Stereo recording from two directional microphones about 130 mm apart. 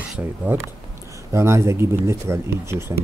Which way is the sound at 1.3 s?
20° right (ahead or behind).